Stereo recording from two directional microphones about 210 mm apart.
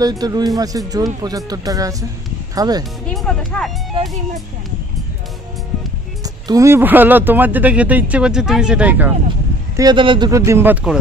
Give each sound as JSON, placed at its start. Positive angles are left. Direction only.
{"t": 0.0, "sound": "speech", "side_deg": -20}
{"t": 3.1, "sound": "speech", "side_deg": 5}
{"t": 6.2, "sound": "speech", "side_deg": -15}
{"t": 9.8, "sound": "speech", "side_deg": -20}